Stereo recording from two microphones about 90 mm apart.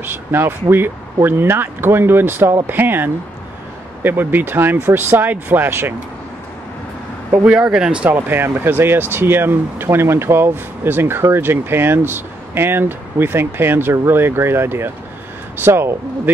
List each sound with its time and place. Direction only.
0.0 s speech: 25° right (ahead or behind)
7.4 s speech: 10° right (ahead or behind)
8.1 s speech: 25° right (ahead or behind)